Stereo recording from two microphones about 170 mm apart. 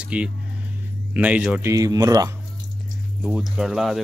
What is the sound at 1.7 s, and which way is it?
Speech, 20° right (ahead or behind).